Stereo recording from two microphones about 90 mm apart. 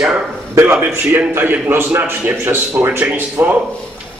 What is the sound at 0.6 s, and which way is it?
A man's voice, 30° right (ahead or behind).